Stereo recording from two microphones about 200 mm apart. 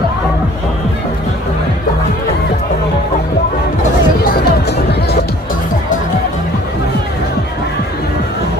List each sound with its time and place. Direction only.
4.3 s music: 55° left (ahead or behind)